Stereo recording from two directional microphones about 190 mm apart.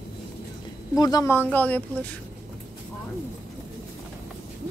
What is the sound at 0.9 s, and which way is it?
Speech, 20° left (ahead or behind).